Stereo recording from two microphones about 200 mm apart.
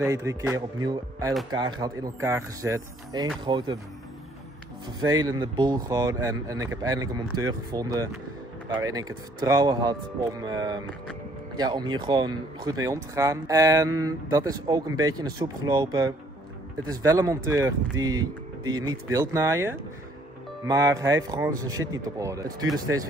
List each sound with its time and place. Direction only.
0.0 s speech: 15° right (ahead or behind)
5.2 s speech: 20° right (ahead or behind)